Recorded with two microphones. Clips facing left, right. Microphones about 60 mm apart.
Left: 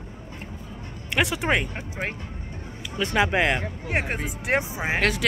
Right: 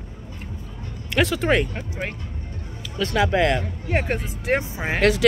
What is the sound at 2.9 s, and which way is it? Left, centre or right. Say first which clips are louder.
Speech: right 2 dB; left.